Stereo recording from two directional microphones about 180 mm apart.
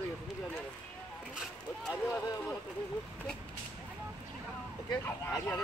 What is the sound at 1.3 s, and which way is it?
Speech, 5° right (ahead or behind).